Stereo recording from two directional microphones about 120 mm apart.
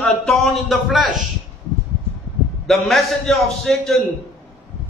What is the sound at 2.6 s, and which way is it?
A man's voice, centre (ahead or behind).